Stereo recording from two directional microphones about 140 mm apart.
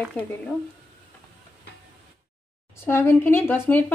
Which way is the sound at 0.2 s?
10° left (ahead or behind).